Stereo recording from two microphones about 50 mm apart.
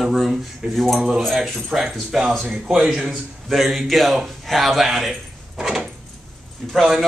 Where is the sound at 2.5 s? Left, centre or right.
Right.